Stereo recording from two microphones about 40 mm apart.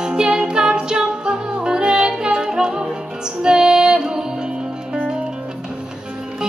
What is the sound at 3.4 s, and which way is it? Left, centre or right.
Female singing, centre.